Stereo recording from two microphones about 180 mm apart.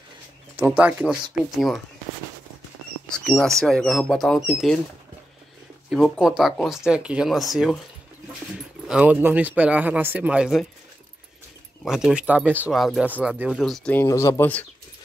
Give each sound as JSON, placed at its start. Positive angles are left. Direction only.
{"t": 0.6, "sound": "speech", "side_deg": -10}
{"t": 3.1, "sound": "bird", "side_deg": 0}
{"t": 3.6, "sound": "speech", "side_deg": 0}
{"t": 5.9, "sound": "speech", "side_deg": 0}
{"t": 11.8, "sound": "speech", "side_deg": 0}
{"t": 14.0, "sound": "speech", "side_deg": 15}